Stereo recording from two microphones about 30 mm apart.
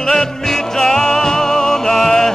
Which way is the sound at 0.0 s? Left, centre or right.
Centre.